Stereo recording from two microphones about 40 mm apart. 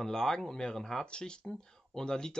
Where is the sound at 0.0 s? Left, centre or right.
Centre.